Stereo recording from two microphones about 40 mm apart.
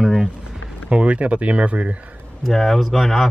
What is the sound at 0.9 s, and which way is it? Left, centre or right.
Speech, right.